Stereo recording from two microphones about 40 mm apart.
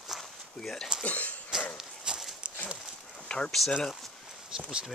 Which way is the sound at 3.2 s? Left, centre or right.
Left.